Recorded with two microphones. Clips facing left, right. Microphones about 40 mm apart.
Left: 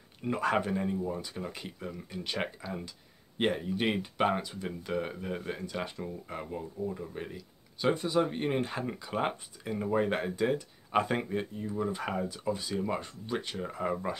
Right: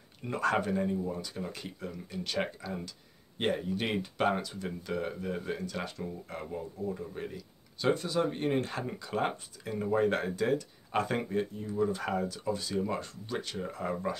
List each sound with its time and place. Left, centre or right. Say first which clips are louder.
0.2 s speech: left 1 dB; centre